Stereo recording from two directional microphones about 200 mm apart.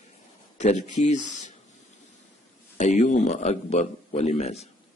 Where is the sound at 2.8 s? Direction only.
35° left (ahead or behind).